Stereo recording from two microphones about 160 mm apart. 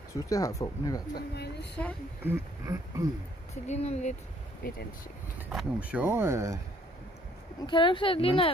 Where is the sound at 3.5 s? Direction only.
40° left (ahead or behind).